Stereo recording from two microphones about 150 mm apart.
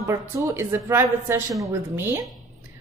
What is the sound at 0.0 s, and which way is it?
A woman's voice, 20° right (ahead or behind).